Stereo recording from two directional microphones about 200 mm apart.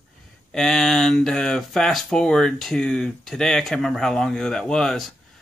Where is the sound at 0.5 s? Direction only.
Centre (ahead or behind).